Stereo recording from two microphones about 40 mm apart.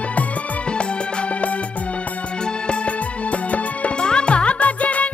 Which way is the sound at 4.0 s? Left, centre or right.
Left.